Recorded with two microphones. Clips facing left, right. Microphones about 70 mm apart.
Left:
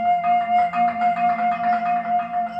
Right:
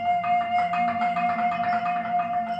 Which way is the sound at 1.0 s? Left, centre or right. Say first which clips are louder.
Left 4 dB; left.